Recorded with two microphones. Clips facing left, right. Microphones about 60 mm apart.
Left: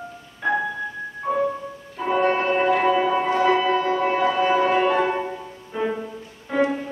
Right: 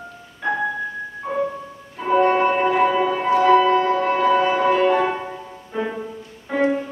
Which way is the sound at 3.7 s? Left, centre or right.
Centre.